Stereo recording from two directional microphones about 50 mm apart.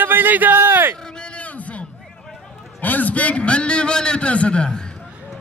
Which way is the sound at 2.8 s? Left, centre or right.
Left.